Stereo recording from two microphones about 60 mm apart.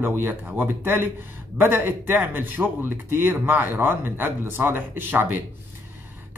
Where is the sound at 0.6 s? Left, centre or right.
Right.